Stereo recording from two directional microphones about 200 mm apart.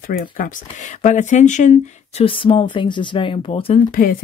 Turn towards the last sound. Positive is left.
turn(degrees=45)  # may be behind; listen again after turning